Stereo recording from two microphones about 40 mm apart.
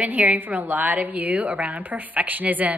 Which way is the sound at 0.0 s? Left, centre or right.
Right.